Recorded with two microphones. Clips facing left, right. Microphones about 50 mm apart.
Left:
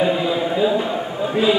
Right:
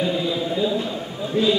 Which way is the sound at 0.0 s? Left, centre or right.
Left.